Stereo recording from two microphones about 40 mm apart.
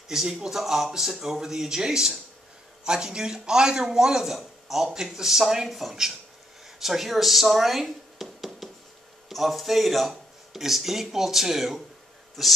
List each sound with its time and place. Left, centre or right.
0.1 s a man's voice: centre
4.4 s a sound: centre
4.9 s a man's voice: centre